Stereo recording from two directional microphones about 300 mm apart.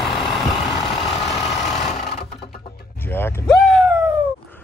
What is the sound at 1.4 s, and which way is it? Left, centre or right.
Vehicle, left.